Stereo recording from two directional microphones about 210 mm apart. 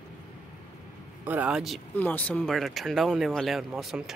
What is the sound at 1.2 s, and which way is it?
Speech, 5° right (ahead or behind).